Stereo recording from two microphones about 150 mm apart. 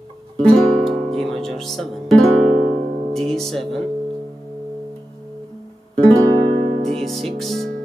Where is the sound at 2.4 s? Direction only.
50° right (ahead or behind).